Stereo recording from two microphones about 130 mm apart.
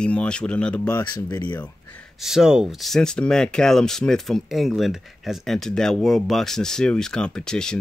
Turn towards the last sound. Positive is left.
turn(degrees=5)  # may be behind; listen again after turning